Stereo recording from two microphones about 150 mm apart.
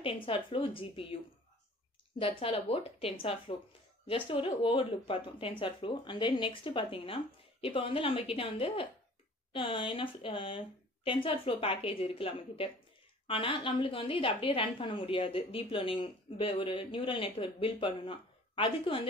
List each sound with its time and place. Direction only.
0.0 s a woman's voice: 35° left (ahead or behind)
2.1 s a woman's voice: 40° left (ahead or behind)